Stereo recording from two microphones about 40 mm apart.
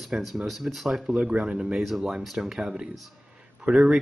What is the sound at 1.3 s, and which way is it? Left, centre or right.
Speech, right.